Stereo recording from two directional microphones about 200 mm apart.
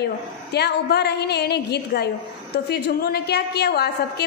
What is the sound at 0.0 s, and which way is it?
A woman's voice, 55° left (ahead or behind).